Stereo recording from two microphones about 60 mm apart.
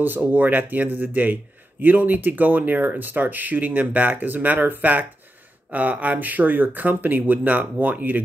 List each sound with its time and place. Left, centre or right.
0.0 s a man's voice: right